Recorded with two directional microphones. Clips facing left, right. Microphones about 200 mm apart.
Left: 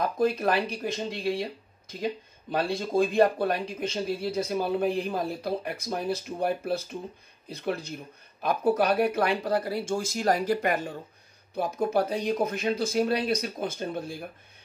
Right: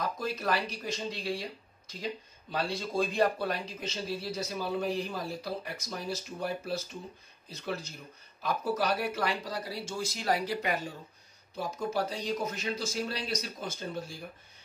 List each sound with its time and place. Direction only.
0.0 s speech: 55° left (ahead or behind)